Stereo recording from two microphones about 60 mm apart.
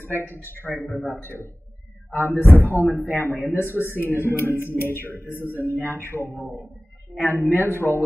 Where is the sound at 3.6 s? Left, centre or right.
Left.